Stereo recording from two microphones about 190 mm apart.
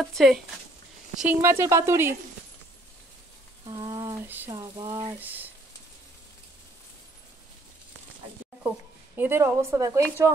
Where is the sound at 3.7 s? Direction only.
20° right (ahead or behind).